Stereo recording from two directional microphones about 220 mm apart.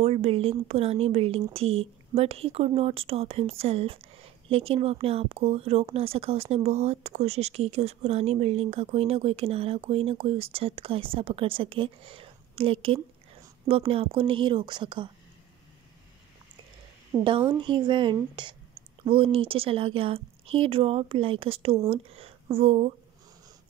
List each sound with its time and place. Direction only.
0.0 s speech: 25° right (ahead or behind)
17.1 s a woman's voice: centre (ahead or behind)
17.5 s speech: 20° right (ahead or behind)